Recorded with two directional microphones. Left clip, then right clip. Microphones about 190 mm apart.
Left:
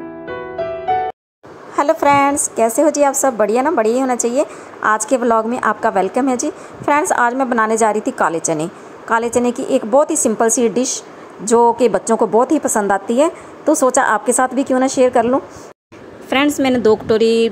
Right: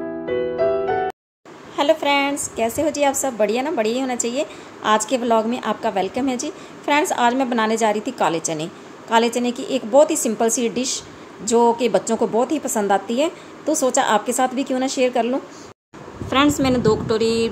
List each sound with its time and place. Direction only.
2.0 s a woman's voice: 25° left (ahead or behind)